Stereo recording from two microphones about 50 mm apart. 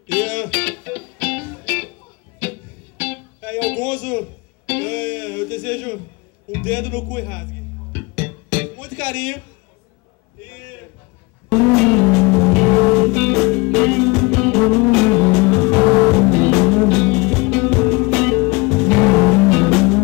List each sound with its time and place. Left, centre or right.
0.1 s music: left
3.0 s music: left
6.5 s speech: left
8.0 s music: left
10.5 s a sound: left
11.4 s music: centre